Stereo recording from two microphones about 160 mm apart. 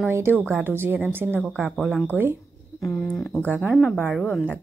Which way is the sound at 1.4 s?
Centre (ahead or behind).